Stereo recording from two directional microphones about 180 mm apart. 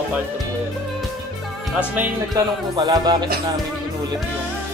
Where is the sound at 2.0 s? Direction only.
20° right (ahead or behind).